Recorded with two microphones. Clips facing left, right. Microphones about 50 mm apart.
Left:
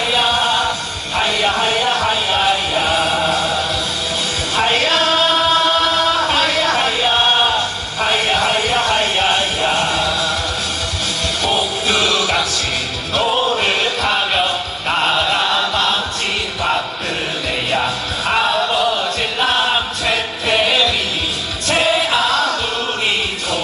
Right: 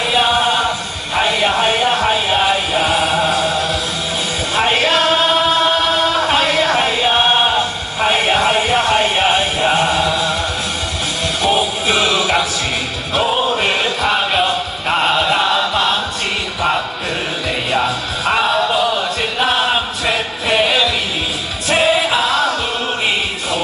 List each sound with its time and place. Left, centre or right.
0.1 s music: centre
4.6 s music: centre
6.2 s a sound: centre
11.4 s music: centre
13.1 s music: centre
17.6 s music: centre